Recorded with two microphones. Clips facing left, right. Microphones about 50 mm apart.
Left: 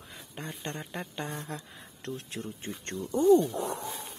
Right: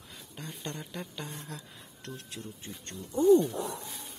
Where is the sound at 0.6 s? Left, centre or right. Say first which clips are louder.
Left 1 dB; left.